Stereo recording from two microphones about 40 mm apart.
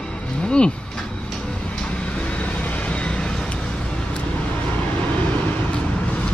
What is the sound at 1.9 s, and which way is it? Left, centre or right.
Vehicle, left.